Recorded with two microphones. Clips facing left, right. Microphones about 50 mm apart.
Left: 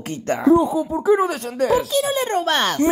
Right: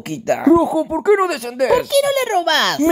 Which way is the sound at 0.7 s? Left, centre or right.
Right.